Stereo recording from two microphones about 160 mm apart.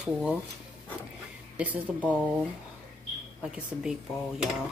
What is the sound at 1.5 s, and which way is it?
Speech, 10° right (ahead or behind).